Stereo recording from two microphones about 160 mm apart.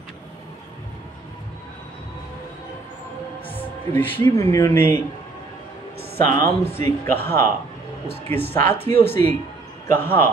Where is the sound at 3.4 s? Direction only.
10° left (ahead or behind).